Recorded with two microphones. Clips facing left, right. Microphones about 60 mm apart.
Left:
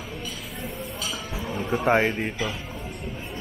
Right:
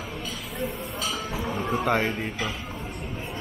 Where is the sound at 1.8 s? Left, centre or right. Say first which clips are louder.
Left 4 dB; centre.